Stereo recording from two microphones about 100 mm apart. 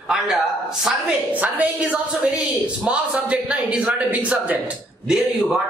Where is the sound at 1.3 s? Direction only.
15° right (ahead or behind).